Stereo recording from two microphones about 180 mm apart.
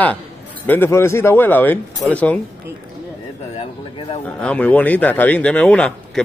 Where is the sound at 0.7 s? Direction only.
15° left (ahead or behind).